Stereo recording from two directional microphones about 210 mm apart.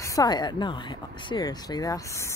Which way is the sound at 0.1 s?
20° left (ahead or behind).